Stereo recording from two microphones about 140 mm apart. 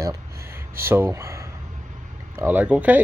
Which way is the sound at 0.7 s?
15° right (ahead or behind).